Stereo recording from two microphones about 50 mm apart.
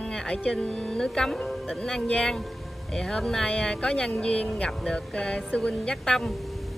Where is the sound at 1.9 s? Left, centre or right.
Left.